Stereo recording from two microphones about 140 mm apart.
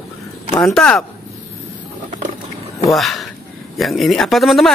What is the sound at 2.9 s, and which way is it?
Speech, centre (ahead or behind).